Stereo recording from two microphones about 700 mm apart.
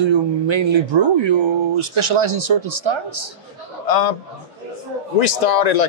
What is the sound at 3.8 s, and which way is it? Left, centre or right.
Speech, left.